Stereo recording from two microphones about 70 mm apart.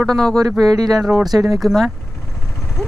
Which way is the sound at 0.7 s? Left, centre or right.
Right.